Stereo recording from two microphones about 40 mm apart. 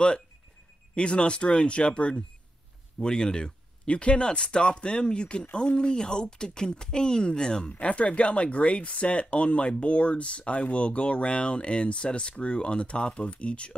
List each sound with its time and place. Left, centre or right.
0.9 s speech: left
7.8 s speech: left